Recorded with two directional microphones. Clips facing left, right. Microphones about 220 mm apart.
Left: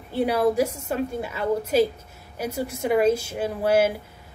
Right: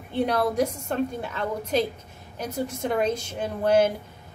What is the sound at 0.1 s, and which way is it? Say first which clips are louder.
A woman's voice: left 3 dB; 5° left (ahead or behind).